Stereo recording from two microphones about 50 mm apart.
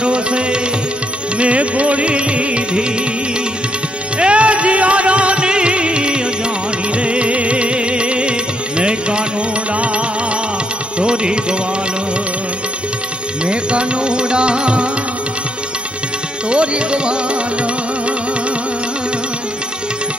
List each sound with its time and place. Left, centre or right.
0.0 s music: right
4.2 s music: right
11.0 s music: centre
13.5 s music: right
16.4 s music: right